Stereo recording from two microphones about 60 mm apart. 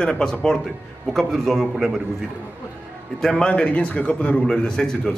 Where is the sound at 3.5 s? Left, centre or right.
Left.